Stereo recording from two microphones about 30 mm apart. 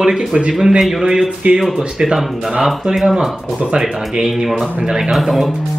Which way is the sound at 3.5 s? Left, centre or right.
Right.